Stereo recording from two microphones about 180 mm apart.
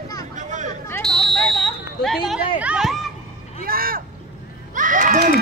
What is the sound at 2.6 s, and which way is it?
Speech, 5° right (ahead or behind).